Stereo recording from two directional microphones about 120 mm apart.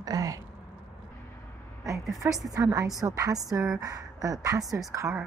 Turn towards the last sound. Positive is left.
turn(degrees=-25)  # may be behind; listen again after turning